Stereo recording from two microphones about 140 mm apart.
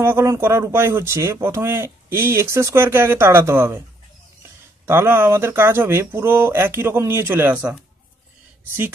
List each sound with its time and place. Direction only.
0.0 s speech: 20° right (ahead or behind)
4.8 s speech: 15° right (ahead or behind)